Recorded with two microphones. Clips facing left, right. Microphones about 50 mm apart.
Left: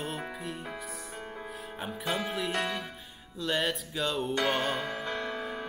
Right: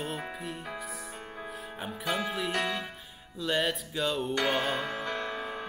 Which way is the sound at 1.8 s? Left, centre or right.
Centre.